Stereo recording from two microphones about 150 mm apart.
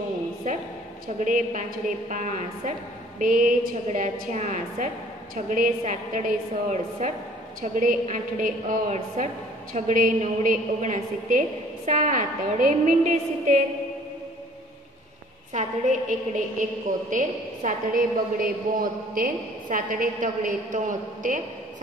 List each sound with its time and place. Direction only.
0.5 s a sound: 60° right (ahead or behind)
1.2 s a woman's voice: 60° right (ahead or behind)
15.5 s a woman's voice: 55° right (ahead or behind)